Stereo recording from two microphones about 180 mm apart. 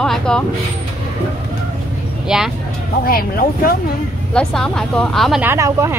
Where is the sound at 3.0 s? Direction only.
55° left (ahead or behind).